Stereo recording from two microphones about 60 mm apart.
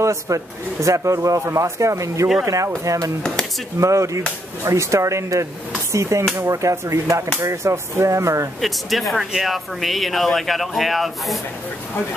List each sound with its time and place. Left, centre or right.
0.0 s speech: right
8.5 s speech: centre